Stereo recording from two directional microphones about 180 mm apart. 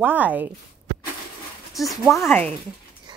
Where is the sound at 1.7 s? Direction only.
Centre (ahead or behind).